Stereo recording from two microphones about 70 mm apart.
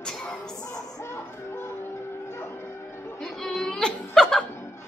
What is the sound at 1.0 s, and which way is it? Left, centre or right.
Music, left.